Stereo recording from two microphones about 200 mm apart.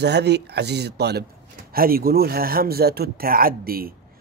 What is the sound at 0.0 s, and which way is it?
A man's voice, 55° right (ahead or behind).